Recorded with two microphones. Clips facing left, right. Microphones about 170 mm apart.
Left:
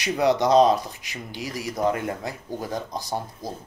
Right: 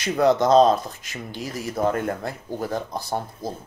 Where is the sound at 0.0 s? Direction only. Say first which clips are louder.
Right 2 dB; 45° right (ahead or behind).